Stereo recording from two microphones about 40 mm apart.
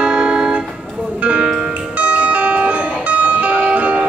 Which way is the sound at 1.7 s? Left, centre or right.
Right.